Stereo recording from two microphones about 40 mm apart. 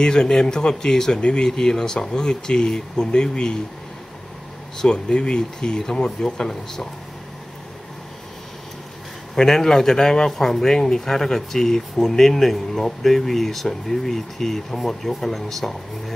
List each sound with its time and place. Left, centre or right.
0.0 s speech: centre
1.2 s speech: left
1.5 s speech: centre
4.7 s speech: centre
9.3 s speech: centre